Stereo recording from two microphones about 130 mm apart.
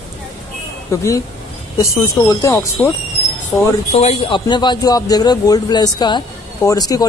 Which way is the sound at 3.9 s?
50° left (ahead or behind).